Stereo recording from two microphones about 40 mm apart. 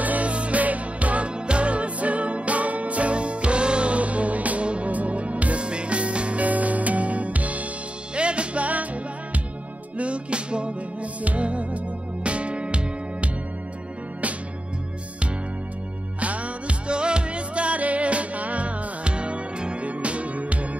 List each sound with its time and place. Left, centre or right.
0.0 s music: right
9.9 s music: right
16.2 s music: right